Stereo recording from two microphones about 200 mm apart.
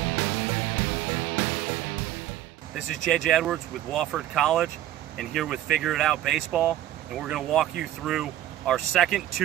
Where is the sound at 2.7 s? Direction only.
Centre (ahead or behind).